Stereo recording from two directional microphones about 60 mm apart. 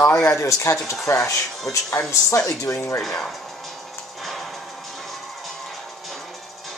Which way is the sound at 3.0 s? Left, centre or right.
Centre.